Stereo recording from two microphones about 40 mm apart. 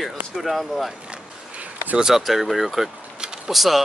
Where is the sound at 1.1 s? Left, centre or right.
Right.